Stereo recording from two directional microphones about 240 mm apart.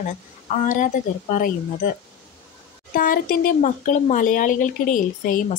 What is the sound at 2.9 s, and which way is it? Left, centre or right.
Speech, left.